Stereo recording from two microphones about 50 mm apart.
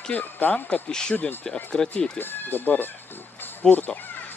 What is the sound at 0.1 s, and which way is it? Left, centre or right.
Speech, left.